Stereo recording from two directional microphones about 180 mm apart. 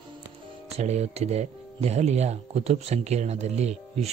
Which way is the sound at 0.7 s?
35° right (ahead or behind).